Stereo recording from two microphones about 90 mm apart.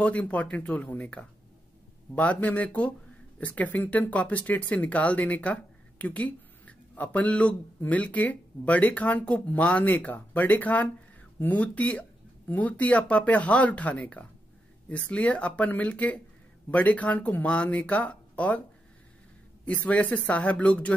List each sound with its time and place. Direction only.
0.0 s speech: 15° left (ahead or behind)
19.6 s speech: 15° left (ahead or behind)